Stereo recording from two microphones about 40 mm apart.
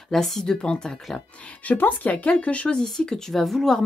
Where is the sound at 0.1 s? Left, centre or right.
Centre.